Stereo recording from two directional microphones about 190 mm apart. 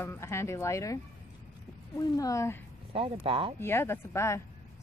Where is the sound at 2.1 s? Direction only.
15° left (ahead or behind).